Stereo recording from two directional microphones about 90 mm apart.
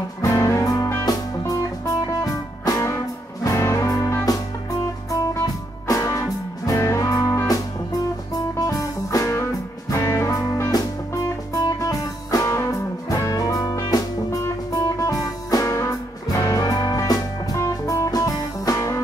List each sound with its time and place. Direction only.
0.2 s music: 35° left (ahead or behind)
11.8 s music: 40° left (ahead or behind)